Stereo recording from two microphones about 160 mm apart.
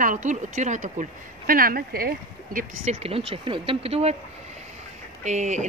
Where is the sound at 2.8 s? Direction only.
40° right (ahead or behind).